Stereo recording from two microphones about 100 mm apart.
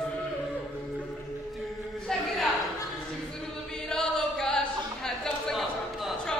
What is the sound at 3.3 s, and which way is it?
Choir, 5° left (ahead or behind).